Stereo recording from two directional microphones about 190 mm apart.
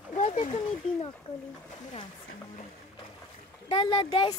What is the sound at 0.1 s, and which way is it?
Splash, 40° left (ahead or behind).